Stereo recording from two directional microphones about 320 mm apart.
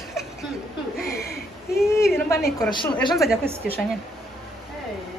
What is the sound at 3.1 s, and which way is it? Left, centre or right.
Speech, centre.